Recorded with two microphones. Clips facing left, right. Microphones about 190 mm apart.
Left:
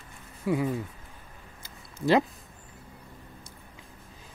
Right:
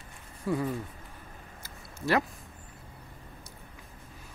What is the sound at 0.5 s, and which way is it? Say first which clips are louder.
Speech: left 3 dB; 10° left (ahead or behind).